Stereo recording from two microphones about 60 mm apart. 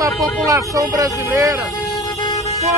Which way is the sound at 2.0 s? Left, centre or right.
Left.